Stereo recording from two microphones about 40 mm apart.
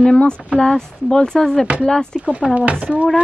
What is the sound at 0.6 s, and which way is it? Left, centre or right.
Speech, centre.